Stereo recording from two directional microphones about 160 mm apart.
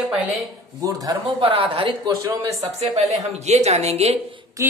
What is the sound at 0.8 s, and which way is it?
Speech, 25° right (ahead or behind).